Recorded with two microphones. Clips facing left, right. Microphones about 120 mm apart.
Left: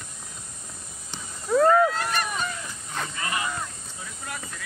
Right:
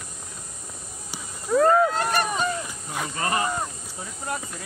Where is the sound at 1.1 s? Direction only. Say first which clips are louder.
Even; 5° right (ahead or behind).